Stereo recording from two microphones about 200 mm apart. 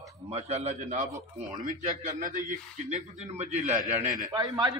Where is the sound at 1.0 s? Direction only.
15° right (ahead or behind).